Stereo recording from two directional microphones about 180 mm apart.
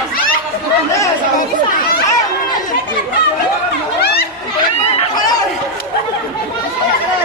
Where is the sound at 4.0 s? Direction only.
60° left (ahead or behind).